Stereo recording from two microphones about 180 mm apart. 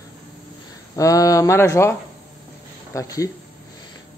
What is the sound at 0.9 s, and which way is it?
A man's voice, 20° left (ahead or behind).